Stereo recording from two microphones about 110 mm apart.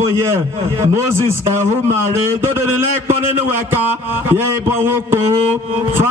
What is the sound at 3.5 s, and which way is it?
A man's voice, 20° right (ahead or behind).